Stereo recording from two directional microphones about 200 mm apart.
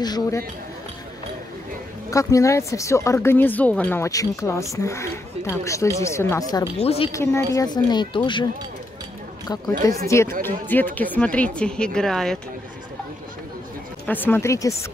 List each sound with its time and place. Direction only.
0.0 s speech: 20° left (ahead or behind)
2.0 s speech: 15° left (ahead or behind)
6.8 s speech: 30° left (ahead or behind)
7.1 s speech: 15° left (ahead or behind)
9.7 s a woman's voice: 15° left (ahead or behind)
14.0 s speech: 10° left (ahead or behind)